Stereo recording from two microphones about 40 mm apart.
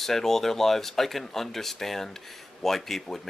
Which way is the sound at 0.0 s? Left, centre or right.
Centre.